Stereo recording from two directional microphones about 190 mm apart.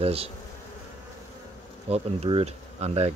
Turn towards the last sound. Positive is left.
turn(degrees=-35)  # may be behind; listen again after turning